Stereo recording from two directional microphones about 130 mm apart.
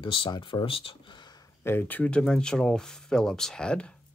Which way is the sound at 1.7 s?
15° left (ahead or behind).